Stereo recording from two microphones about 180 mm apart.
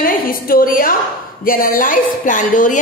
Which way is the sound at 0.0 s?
55° left (ahead or behind).